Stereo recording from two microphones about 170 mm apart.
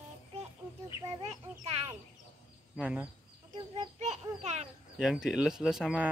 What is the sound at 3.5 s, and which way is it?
A child's voice, 40° right (ahead or behind).